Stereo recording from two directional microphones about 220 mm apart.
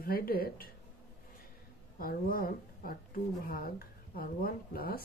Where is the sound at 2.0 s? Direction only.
40° left (ahead or behind).